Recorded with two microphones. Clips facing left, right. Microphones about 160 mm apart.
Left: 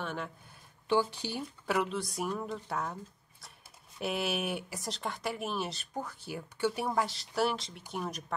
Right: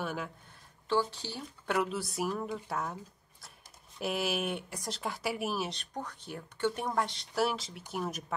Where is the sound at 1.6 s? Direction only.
Centre (ahead or behind).